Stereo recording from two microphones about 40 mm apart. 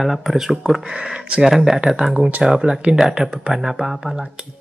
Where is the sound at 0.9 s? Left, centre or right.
Right.